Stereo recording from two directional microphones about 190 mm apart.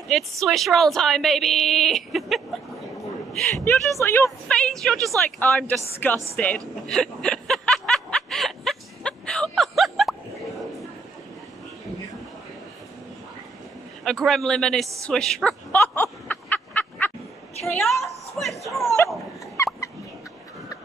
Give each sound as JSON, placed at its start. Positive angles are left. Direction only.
{"t": 0.1, "sound": "a woman's voice", "side_deg": 0}
{"t": 3.3, "sound": "a woman's voice", "side_deg": 10}
{"t": 6.9, "sound": "snicker", "side_deg": 0}
{"t": 14.0, "sound": "a woman's voice", "side_deg": 0}
{"t": 15.0, "sound": "a sound", "side_deg": 5}
{"t": 18.7, "sound": "speech", "side_deg": 0}
{"t": 19.5, "sound": "a sound", "side_deg": 15}